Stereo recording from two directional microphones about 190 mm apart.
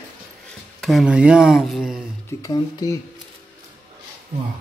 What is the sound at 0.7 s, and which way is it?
Speech, centre (ahead or behind).